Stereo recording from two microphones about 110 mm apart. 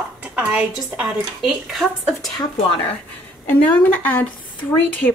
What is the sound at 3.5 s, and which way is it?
Speech, 15° left (ahead or behind).